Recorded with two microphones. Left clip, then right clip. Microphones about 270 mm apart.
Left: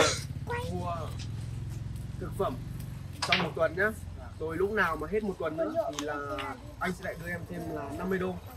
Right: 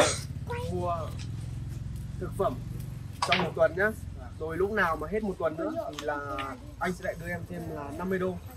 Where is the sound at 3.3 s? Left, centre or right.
Centre.